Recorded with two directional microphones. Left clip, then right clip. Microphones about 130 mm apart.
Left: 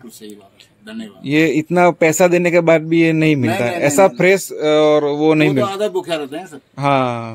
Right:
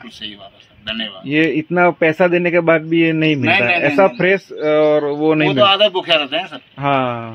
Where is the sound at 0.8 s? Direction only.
40° left (ahead or behind).